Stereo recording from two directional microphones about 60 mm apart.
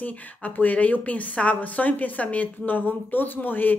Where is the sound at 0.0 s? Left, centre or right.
Left.